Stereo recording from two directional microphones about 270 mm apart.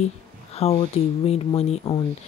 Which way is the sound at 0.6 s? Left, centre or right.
Left.